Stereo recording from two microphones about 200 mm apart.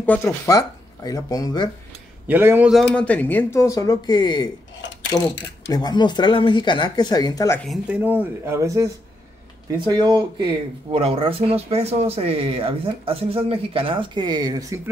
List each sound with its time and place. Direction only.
0.0 s speech: 10° left (ahead or behind)
2.2 s speech: 10° right (ahead or behind)
2.9 s speech: 5° left (ahead or behind)
7.6 s speech: 5° right (ahead or behind)